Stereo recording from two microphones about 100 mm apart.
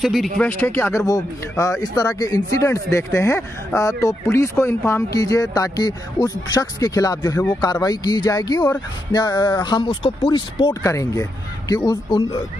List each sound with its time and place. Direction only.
0.0 s speech: centre (ahead or behind)
0.4 s speech: 20° left (ahead or behind)
1.6 s speech: 35° left (ahead or behind)
5.1 s speech: 35° left (ahead or behind)
9.8 s speech: 65° left (ahead or behind)
10.7 s speech: 30° left (ahead or behind)